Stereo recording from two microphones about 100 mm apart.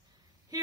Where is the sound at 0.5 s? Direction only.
40° right (ahead or behind).